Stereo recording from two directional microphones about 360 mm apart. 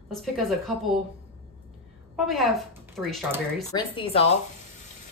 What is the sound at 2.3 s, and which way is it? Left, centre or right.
Speech, centre.